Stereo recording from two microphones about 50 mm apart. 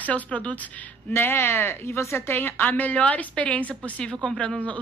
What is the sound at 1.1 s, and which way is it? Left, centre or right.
Speech, left.